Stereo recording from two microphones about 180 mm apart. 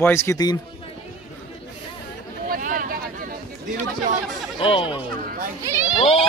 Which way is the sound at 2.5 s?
50° right (ahead or behind).